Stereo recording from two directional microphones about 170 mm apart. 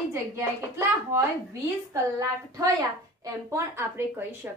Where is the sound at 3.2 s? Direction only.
15° right (ahead or behind).